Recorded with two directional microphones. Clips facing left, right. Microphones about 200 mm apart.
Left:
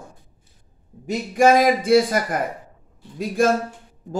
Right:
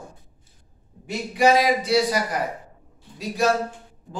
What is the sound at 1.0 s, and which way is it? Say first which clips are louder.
A man's voice: left 3 dB; 50° left (ahead or behind).